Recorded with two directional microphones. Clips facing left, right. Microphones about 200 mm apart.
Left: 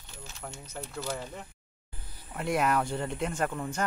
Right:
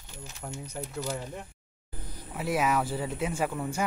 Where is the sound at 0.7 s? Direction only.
15° right (ahead or behind).